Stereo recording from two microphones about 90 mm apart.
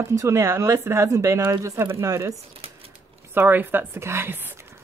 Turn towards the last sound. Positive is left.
turn(degrees=-25)  # may be behind; listen again after turning